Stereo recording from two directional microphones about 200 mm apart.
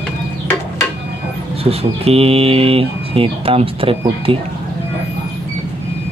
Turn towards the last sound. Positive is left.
turn(degrees=-25)  # may be behind; listen again after turning